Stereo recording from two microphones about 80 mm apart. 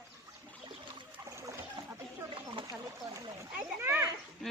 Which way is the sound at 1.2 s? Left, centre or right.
Right.